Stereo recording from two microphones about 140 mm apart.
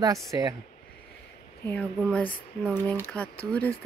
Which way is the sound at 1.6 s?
10° left (ahead or behind).